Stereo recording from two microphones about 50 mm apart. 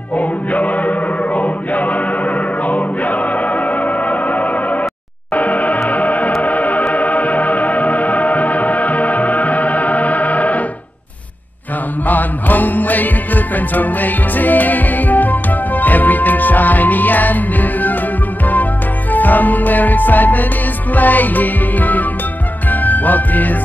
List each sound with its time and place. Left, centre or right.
0.1 s music: left
12.1 s music: left
19.1 s music: left